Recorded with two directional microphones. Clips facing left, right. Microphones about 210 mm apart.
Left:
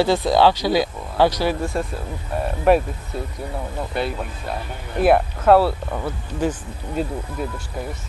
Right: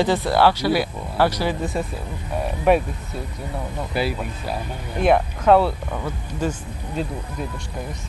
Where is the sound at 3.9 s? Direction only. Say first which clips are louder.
Right 2 dB; 5° right (ahead or behind).